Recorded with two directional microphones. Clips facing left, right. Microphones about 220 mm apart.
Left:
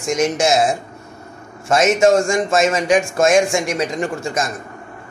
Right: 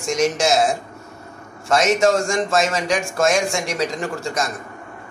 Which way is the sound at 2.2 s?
Centre (ahead or behind).